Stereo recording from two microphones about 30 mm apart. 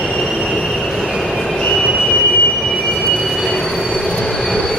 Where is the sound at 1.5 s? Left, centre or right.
Centre.